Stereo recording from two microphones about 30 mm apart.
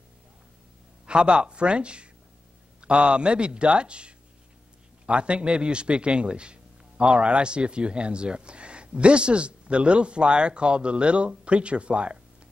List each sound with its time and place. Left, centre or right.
1.0 s a man's voice: right